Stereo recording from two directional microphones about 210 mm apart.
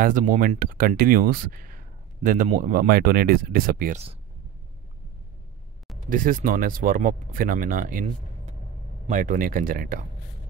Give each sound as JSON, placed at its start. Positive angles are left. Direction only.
{"t": 0.0, "sound": "speech", "side_deg": -40}
{"t": 6.0, "sound": "speech", "side_deg": -40}